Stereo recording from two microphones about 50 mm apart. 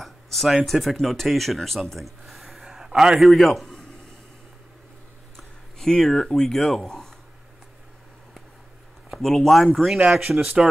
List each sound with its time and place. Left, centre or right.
0.0 s a sound: centre
0.7 s a man's voice: centre
3.2 s a man's voice: centre
5.8 s speech: centre
9.2 s speech: centre
10.0 s speech: centre